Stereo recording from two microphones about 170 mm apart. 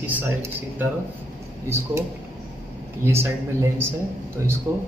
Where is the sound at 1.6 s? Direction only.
15° right (ahead or behind).